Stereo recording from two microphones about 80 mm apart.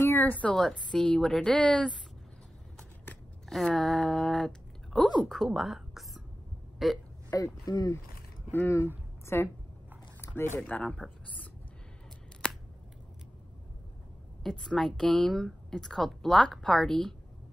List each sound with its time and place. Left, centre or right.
0.0 s a woman's voice: left
3.4 s a woman's voice: centre
5.5 s a sound: centre
6.8 s a woman's voice: centre
7.2 s speech: left
9.2 s a sound: left
10.2 s speech: left
10.6 s speech: centre
12.4 s scissors: centre
14.4 s a woman's voice: centre